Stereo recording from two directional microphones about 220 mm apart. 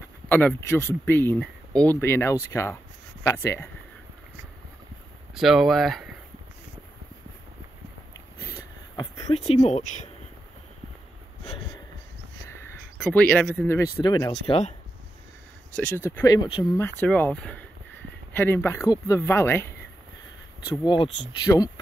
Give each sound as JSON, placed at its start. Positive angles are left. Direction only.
{"t": 0.3, "sound": "speech", "side_deg": 10}
{"t": 5.3, "sound": "speech", "side_deg": 0}
{"t": 8.5, "sound": "a sound", "side_deg": 20}
{"t": 9.6, "sound": "speech", "side_deg": 30}
{"t": 12.9, "sound": "speech", "side_deg": 5}
{"t": 15.7, "sound": "speech", "side_deg": 10}